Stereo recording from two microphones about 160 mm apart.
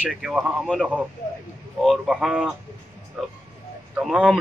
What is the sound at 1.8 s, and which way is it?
Speech, 5° right (ahead or behind).